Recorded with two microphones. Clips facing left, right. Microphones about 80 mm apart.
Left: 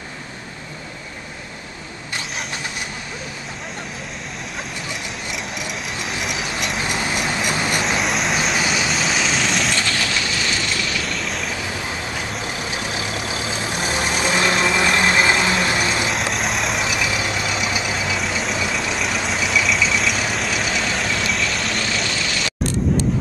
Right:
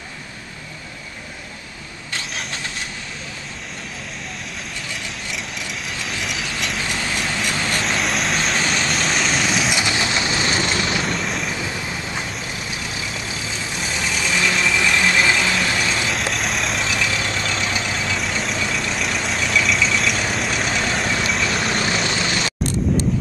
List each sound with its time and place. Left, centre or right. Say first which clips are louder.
6.0 s vehicle: left 2 dB; centre
7.8 s vehicle: left 1 dB; centre
9.8 s vehicle: right 1 dB; centre
11.1 s vehicle: right 2 dB; centre
13.5 s vehicle: left 3 dB; left
14.4 s vehicle: left 1 dB; left
16.2 s vehicle: left 1 dB; centre
16.8 s vehicle: left 1 dB; centre
21.6 s vehicle: right 2 dB; right